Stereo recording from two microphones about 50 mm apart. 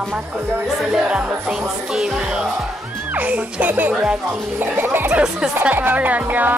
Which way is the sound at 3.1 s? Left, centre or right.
Right.